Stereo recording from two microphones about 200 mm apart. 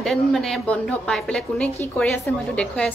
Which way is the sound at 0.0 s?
Centre (ahead or behind).